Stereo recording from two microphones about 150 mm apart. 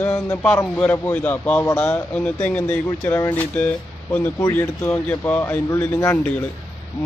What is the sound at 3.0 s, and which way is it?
Speech, 20° left (ahead or behind).